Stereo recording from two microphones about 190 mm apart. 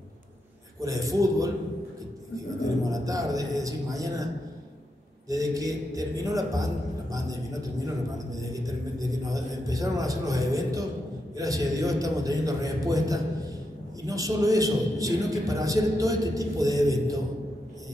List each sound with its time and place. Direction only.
0.7 s a man's voice: 15° right (ahead or behind)
2.8 s a man's voice: 20° right (ahead or behind)
5.3 s speech: 20° right (ahead or behind)
8.4 s a man's voice: 20° right (ahead or behind)